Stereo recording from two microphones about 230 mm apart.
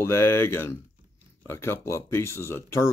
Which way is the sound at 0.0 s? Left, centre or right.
Centre.